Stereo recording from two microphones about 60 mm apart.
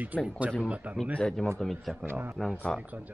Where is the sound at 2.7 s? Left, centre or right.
Centre.